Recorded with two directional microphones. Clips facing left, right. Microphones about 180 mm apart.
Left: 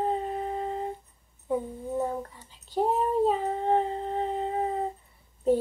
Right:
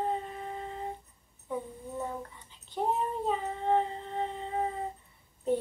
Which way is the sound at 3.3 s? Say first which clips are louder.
Left 4 dB; 35° left (ahead or behind).